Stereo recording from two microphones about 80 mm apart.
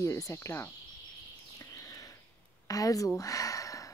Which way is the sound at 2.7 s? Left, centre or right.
Left.